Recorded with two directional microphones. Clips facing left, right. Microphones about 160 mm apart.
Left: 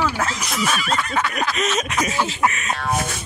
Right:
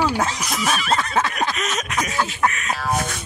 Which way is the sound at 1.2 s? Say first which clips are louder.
Right 1 dB; 25° right (ahead or behind).